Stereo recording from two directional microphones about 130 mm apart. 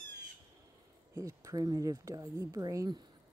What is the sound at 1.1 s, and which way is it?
Speech, 25° right (ahead or behind).